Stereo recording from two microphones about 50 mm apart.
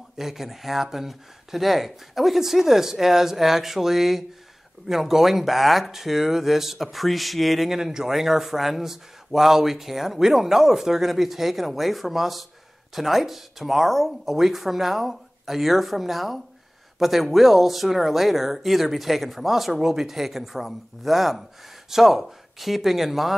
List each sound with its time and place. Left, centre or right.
0.2 s speech: centre